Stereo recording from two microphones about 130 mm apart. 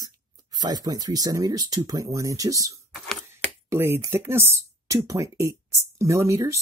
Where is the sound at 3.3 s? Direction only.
20° right (ahead or behind).